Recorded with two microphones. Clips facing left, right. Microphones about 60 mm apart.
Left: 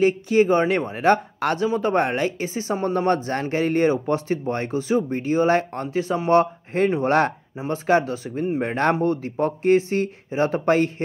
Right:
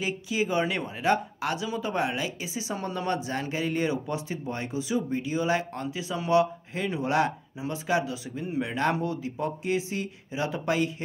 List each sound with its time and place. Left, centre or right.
0.0 s speech: left